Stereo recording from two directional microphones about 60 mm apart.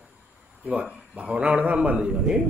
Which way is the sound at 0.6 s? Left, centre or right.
Right.